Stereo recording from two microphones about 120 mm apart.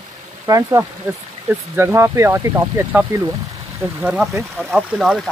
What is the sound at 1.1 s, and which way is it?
Speech, 15° right (ahead or behind).